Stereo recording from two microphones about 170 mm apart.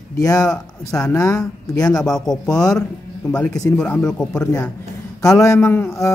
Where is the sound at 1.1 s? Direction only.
20° left (ahead or behind).